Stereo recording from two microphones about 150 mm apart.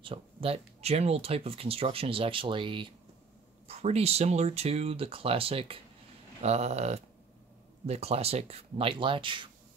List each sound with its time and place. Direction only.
0.0 s speech: 40° right (ahead or behind)
3.6 s speech: 45° right (ahead or behind)